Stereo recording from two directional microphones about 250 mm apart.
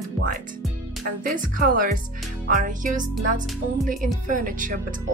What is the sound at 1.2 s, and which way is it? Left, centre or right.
Speech, right.